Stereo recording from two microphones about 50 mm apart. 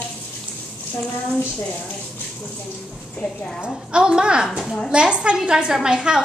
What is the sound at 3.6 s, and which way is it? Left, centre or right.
Speech, centre.